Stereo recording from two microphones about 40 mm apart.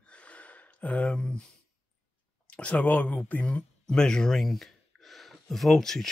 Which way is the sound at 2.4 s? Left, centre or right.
Left.